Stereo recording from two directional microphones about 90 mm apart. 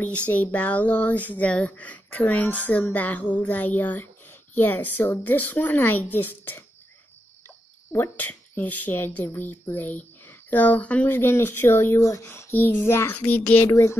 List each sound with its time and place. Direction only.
0.3 s speech: 20° left (ahead or behind)
13.7 s speech: 30° left (ahead or behind)